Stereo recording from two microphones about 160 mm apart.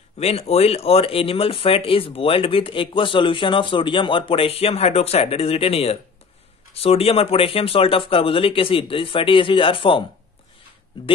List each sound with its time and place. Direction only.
0.2 s speech: 40° left (ahead or behind)